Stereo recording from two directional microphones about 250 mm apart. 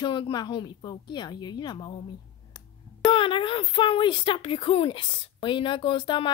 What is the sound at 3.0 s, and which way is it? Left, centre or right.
A woman's voice, centre.